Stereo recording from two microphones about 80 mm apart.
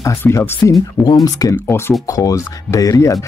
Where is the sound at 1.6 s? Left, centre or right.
Left.